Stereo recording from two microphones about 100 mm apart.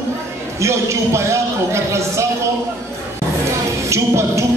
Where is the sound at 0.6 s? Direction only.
30° right (ahead or behind).